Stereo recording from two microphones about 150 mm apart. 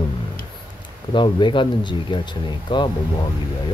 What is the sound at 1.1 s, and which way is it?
Speech, 30° left (ahead or behind).